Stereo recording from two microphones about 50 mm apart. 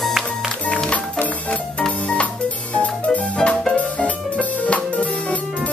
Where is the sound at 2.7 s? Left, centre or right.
Left.